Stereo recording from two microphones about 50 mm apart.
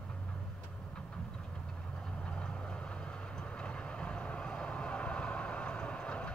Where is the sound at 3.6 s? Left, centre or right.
Centre.